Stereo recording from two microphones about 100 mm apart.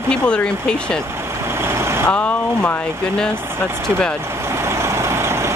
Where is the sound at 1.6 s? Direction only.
25° right (ahead or behind).